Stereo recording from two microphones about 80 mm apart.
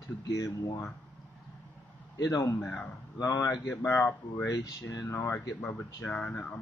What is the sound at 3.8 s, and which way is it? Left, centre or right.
Speech, left.